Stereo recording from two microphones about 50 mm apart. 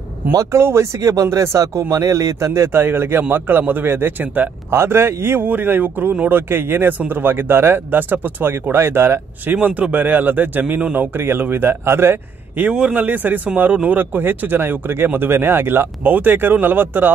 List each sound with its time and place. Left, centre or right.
0.4 s speech: right
2.7 s speech: right
4.6 s a man's voice: right
5.5 s speech: right
8.7 s a man's voice: right
9.5 s speech: right
12.6 s speech: right